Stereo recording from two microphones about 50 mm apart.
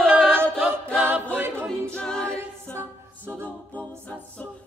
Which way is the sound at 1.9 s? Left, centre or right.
Centre.